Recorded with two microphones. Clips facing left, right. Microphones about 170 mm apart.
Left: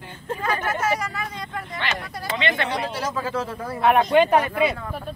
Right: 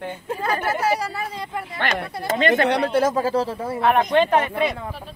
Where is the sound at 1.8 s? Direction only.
50° right (ahead or behind).